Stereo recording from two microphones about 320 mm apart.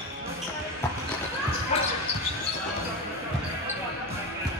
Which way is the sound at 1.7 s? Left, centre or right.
Centre.